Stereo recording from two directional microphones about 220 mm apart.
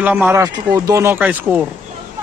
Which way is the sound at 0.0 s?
10° right (ahead or behind).